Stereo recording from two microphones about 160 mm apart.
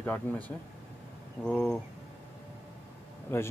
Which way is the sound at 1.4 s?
5° left (ahead or behind).